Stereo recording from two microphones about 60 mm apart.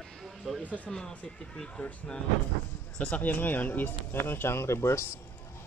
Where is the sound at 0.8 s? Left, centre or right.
Centre.